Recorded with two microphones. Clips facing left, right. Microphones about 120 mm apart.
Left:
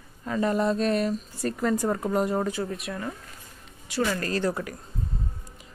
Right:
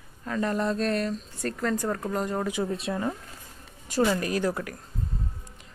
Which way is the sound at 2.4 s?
15° right (ahead or behind).